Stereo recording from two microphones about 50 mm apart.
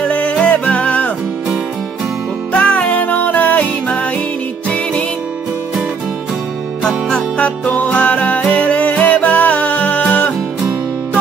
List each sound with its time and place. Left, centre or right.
0.0 s music: left
2.5 s music: left
7.3 s music: left